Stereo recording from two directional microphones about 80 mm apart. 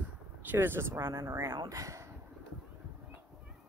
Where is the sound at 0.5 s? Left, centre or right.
Right.